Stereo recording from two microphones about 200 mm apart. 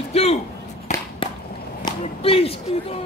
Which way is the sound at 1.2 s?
25° left (ahead or behind).